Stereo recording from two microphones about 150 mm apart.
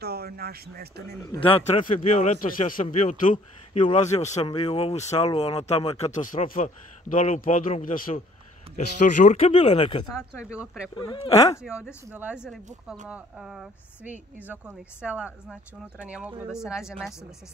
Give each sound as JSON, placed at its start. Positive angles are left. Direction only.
{"t": 0.0, "sound": "speech", "side_deg": -90}
{"t": 1.4, "sound": "speech", "side_deg": 35}
{"t": 1.9, "sound": "a man's voice", "side_deg": 60}
{"t": 3.3, "sound": "speech", "side_deg": 40}
{"t": 3.9, "sound": "speech", "side_deg": 50}
{"t": 4.5, "sound": "speech", "side_deg": 30}
{"t": 7.1, "sound": "a man's voice", "side_deg": 60}
{"t": 9.5, "sound": "speech", "side_deg": 40}
{"t": 10.4, "sound": "speech", "side_deg": -5}
{"t": 11.0, "sound": "speech", "side_deg": 35}
{"t": 11.3, "sound": "speech", "side_deg": 20}
{"t": 11.6, "sound": "speech", "side_deg": -5}